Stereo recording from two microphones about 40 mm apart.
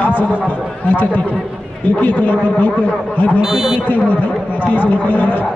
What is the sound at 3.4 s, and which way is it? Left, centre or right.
Speech, centre.